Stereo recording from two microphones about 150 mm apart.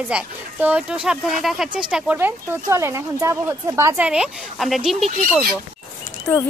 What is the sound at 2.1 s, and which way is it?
Speech, 15° right (ahead or behind).